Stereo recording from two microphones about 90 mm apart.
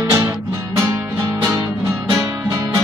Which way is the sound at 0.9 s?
40° right (ahead or behind).